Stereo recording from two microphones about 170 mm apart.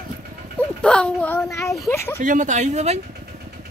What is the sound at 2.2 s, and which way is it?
Speech, 50° right (ahead or behind).